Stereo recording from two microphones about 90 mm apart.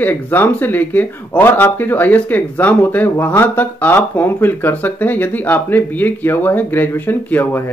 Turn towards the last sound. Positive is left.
turn(degrees=20)  # may be behind; listen again after turning